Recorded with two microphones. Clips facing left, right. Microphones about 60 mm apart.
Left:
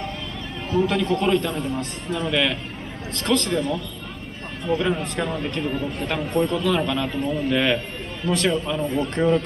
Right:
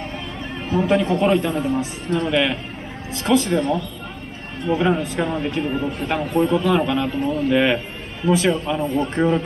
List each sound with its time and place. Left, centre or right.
0.7 s a man's voice: centre